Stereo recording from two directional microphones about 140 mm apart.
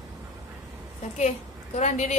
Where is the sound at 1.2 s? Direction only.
55° left (ahead or behind).